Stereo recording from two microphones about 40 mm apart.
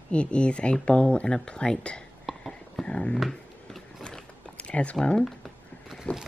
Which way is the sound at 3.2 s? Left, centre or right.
Centre.